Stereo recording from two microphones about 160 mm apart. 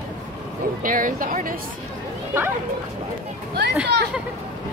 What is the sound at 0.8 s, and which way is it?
Speech, 60° right (ahead or behind).